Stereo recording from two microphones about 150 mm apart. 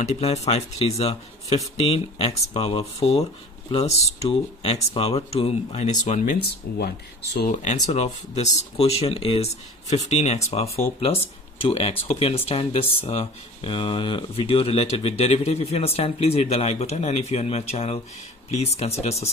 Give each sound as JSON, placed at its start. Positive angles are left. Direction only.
{"t": 0.0, "sound": "speech", "side_deg": 50}
{"t": 6.7, "sound": "speech", "side_deg": 90}
{"t": 7.9, "sound": "speech", "side_deg": 45}